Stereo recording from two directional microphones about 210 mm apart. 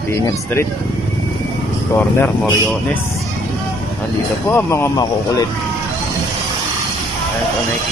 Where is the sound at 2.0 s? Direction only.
10° left (ahead or behind).